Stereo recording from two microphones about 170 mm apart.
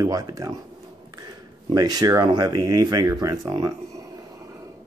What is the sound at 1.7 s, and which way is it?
Speech, 20° right (ahead or behind).